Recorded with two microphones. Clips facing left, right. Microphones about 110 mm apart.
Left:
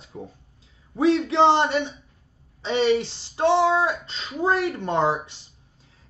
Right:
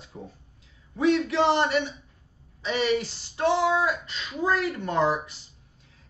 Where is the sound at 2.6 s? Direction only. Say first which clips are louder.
Left 4 dB; 25° left (ahead or behind).